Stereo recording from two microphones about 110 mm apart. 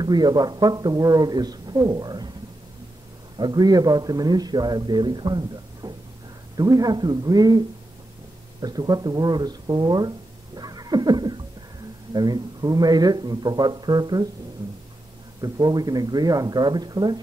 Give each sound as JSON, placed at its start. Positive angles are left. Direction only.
{"t": 0.0, "sound": "speech", "side_deg": -40}
{"t": 3.3, "sound": "speech", "side_deg": -40}
{"t": 15.4, "sound": "speech", "side_deg": -35}